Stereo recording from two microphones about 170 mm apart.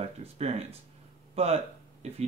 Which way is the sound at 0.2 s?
40° right (ahead or behind).